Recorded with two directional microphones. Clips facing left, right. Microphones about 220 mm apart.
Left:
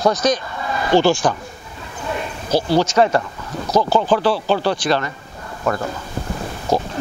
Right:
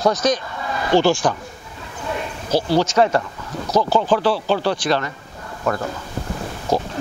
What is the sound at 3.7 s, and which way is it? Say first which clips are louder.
Speech: left 1 dB; 40° left (ahead or behind).